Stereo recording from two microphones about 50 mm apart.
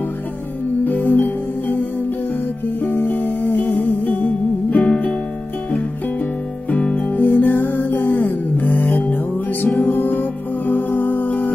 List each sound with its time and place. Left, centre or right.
0.8 s music: left
2.8 s music: left
6.9 s music: left